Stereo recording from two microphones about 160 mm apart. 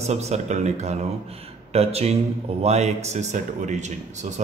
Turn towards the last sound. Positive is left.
turn(degrees=-50)  # may be behind; listen again after turning